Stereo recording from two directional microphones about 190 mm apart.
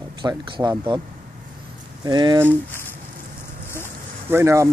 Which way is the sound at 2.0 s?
20° right (ahead or behind).